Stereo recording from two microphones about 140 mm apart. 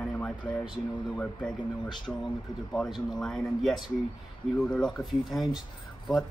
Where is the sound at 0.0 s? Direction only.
5° left (ahead or behind).